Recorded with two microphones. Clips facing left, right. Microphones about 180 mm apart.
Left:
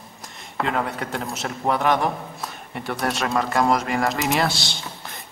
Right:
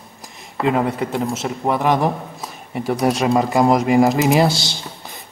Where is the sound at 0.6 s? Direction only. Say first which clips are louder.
Right 6 dB; 5° right (ahead or behind).